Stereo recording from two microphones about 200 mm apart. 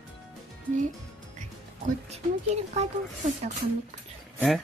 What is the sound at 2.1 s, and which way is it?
Speech, 30° right (ahead or behind).